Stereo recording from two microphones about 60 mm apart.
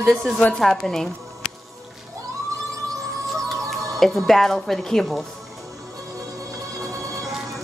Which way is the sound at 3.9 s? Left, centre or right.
Centre.